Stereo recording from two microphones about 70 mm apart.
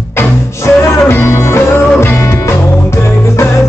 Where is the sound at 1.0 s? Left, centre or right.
Left.